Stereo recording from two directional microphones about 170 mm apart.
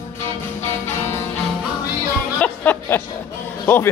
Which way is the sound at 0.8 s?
15° left (ahead or behind).